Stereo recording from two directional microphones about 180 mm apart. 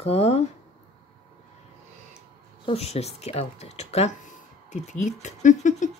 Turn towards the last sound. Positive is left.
turn(degrees=45)  # may be behind; listen again after turning